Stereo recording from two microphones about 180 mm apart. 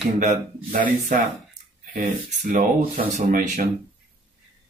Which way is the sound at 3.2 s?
45° right (ahead or behind).